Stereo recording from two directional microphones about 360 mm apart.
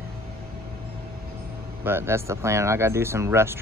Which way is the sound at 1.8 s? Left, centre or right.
Centre.